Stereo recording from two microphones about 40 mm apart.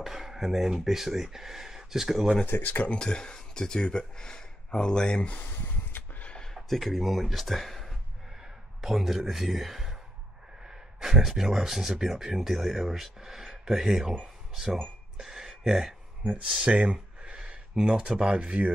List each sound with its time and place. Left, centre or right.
0.0 s speech: centre
2.6 s speech: left
2.9 s speech: left
5.9 s a sound: left
6.5 s a man's voice: centre
15.1 s a sound: centre
16.3 s speech: right